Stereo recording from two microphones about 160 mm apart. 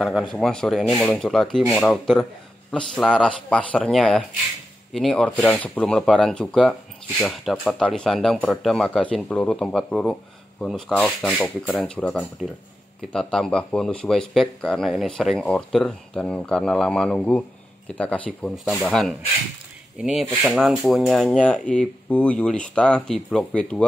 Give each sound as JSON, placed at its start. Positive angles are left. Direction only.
{"t": 0.1, "sound": "speech", "side_deg": 0}